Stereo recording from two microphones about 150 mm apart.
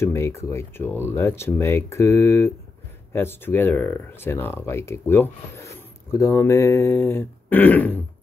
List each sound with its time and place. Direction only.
0.0 s speech: 15° left (ahead or behind)